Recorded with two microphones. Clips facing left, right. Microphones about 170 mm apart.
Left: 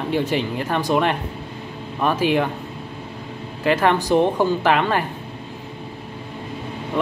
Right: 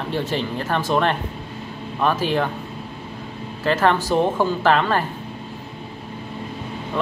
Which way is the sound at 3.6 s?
15° left (ahead or behind).